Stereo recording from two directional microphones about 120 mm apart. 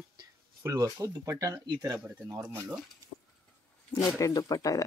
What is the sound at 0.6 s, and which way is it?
Speech, 30° right (ahead or behind).